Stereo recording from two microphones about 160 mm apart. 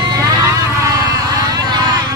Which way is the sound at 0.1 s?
20° right (ahead or behind).